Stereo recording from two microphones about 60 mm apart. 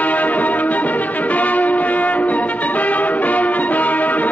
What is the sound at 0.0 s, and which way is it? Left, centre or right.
Music, left.